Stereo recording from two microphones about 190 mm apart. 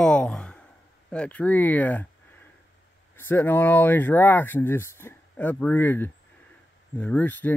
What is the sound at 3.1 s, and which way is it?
Speech, 10° left (ahead or behind).